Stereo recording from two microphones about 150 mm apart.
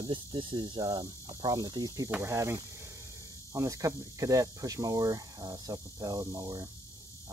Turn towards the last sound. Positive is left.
turn(degrees=-25)  # may be behind; listen again after turning